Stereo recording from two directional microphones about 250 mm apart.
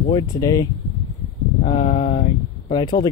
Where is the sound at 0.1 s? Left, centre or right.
Centre.